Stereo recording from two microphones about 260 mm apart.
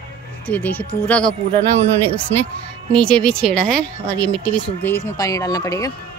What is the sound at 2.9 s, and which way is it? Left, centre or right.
Speech, centre.